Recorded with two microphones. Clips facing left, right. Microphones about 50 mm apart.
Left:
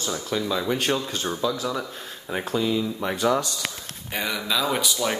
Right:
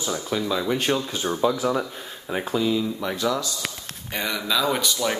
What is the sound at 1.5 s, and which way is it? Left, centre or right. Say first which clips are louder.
Speech: right 5 dB; right.